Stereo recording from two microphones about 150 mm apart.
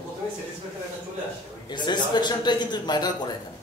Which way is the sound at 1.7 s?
30° left (ahead or behind).